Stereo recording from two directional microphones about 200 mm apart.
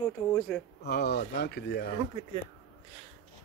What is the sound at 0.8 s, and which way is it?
Speech, 55° left (ahead or behind).